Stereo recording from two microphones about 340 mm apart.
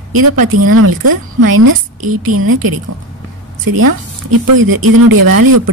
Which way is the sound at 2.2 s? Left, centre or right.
Right.